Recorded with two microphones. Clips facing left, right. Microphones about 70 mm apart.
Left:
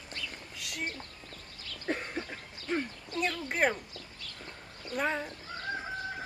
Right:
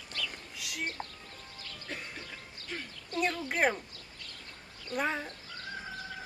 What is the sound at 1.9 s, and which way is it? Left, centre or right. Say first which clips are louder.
Cough: left 9 dB; left.